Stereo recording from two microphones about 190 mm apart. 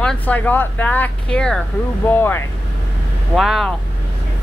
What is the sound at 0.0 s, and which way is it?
Speech, 5° left (ahead or behind).